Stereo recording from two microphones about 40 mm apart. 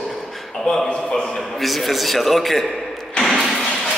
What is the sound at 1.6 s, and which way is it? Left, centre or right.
A man's voice, centre.